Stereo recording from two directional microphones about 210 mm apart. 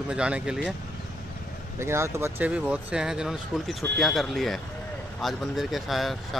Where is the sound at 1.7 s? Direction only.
10° right (ahead or behind).